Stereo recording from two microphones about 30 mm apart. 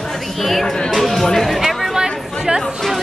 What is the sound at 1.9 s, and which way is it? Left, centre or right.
Chatter, right.